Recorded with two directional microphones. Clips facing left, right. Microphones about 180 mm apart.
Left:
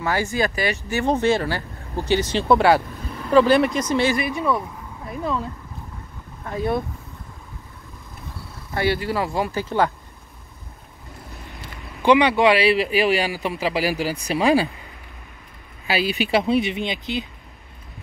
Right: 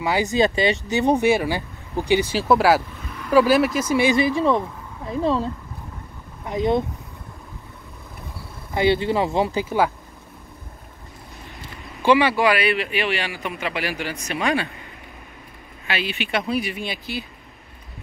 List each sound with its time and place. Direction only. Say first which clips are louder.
0.0 s speech: right 3 dB; 15° right (ahead or behind)
4.4 s speech: right 3 dB; 25° right (ahead or behind)
6.4 s speech: right 3 dB; 15° right (ahead or behind)
8.7 s speech: right 3 dB; 25° right (ahead or behind)
12.0 s speech: left 2 dB; 15° left (ahead or behind); by 14.7 s 35° left (ahead or behind)
15.9 s speech: left 5 dB; 40° left (ahead or behind); by 17.3 s 20° left (ahead or behind)